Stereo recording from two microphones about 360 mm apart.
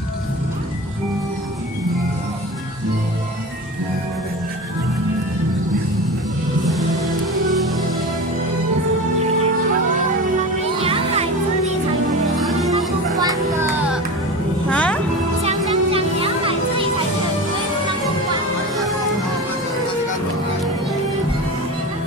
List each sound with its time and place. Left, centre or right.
6.6 s music: centre
10.8 s music: centre
13.2 s music: centre
15.4 s music: centre